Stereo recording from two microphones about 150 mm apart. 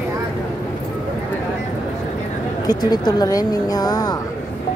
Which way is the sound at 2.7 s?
25° left (ahead or behind).